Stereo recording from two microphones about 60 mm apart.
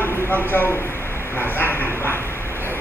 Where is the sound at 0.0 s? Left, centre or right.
Left.